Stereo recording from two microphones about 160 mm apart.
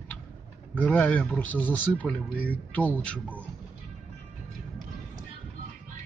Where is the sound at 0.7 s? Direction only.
10° left (ahead or behind).